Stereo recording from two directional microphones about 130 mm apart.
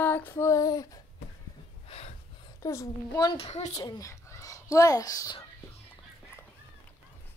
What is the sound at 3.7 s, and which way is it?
A woman's voice, 25° left (ahead or behind).